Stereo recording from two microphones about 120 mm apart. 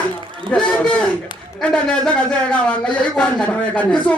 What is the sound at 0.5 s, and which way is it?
A woman's voice, 10° left (ahead or behind).